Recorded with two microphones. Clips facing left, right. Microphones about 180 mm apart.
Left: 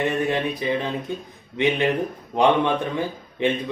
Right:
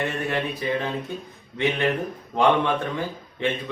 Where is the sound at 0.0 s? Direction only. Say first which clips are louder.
Left 4 dB; 15° left (ahead or behind).